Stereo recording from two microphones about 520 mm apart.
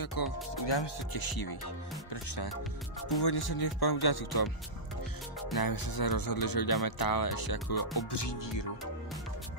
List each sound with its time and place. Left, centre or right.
0.0 s speech: left
5.6 s speech: left